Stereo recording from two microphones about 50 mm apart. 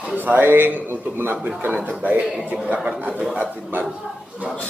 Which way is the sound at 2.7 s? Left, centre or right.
Centre.